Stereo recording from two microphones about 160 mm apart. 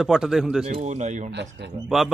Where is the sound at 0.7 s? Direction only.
45° right (ahead or behind).